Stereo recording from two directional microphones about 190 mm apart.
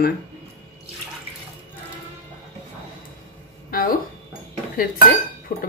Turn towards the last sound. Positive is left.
turn(degrees=50)  # may be behind; listen again after turning